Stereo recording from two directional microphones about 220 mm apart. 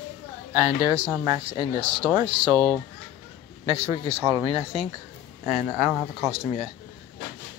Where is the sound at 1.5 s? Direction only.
25° left (ahead or behind).